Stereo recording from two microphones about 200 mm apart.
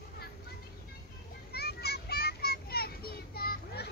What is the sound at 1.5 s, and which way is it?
Children playing, 50° left (ahead or behind).